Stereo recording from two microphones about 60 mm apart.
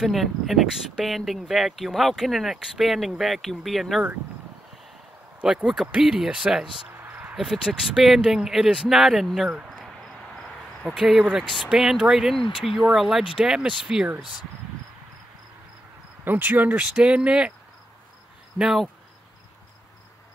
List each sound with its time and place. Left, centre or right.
0.0 s speech: centre
5.4 s speech: centre
9.7 s cricket: centre
10.9 s speech: centre
16.3 s speech: right
17.0 s speech: centre
18.6 s speech: centre